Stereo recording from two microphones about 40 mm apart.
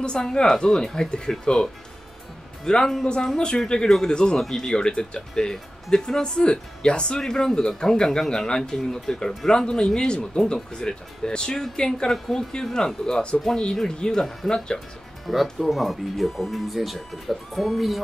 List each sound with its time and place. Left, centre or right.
0.2 s speech: centre
4.4 s speech: centre
7.2 s speech: centre
14.4 s speech: left
15.3 s speech: centre
15.6 s speech: centre